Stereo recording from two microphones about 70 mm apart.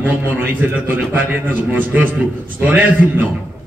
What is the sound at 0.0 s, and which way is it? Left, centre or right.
A man's voice, right.